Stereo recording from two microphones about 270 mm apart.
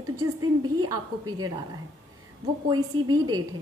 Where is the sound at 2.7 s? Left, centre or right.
Centre.